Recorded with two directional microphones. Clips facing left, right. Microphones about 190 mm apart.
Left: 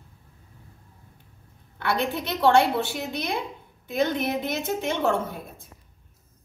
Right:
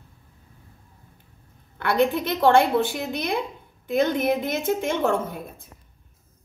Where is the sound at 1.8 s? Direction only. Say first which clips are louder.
Right 5 dB; 55° right (ahead or behind).